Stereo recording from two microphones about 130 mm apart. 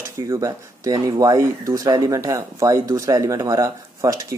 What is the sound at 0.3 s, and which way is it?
Speech, 25° right (ahead or behind).